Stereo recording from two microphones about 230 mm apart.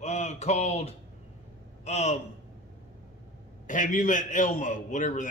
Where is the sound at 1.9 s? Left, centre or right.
Left.